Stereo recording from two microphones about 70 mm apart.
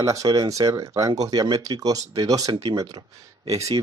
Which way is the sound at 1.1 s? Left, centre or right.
Right.